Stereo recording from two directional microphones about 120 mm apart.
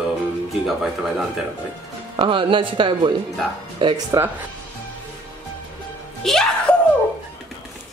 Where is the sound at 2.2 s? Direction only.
45° right (ahead or behind).